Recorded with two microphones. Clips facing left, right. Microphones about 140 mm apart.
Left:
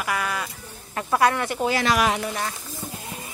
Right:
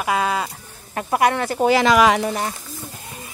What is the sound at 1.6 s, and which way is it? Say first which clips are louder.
Speech: right 7 dB; 85° right.